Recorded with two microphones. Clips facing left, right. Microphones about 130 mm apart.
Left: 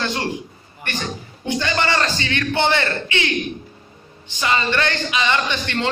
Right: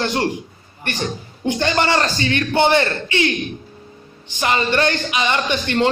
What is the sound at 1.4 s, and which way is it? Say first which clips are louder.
Speech: right 3 dB; 50° right (ahead or behind).